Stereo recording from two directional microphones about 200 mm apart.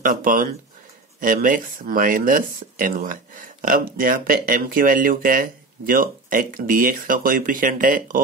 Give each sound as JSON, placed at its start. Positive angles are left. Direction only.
{"t": 0.0, "sound": "speech", "side_deg": -45}